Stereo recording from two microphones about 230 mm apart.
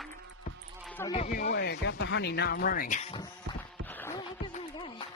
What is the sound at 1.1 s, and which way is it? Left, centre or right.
Speech, left.